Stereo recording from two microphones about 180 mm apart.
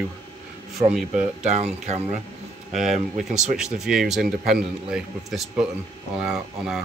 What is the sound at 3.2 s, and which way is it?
Speech, centre (ahead or behind).